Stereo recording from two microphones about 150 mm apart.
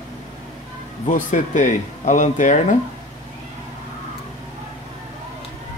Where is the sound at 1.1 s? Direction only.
55° left (ahead or behind).